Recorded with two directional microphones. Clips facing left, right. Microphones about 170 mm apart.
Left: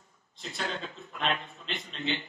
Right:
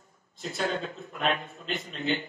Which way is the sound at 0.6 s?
45° right (ahead or behind).